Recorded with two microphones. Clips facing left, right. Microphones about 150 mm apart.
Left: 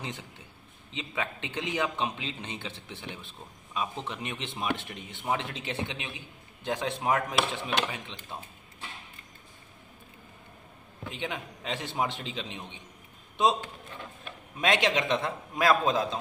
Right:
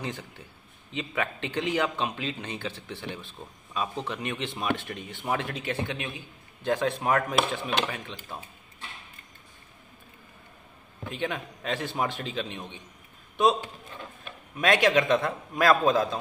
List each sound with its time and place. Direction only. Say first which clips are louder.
0.0 s a man's voice: right 4 dB; 20° left (ahead or behind)
11.1 s a man's voice: right 4 dB; 20° left (ahead or behind)
14.6 s a man's voice: right 4 dB; 20° left (ahead or behind)